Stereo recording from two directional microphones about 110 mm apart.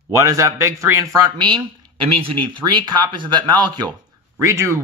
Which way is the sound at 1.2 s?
45° right (ahead or behind).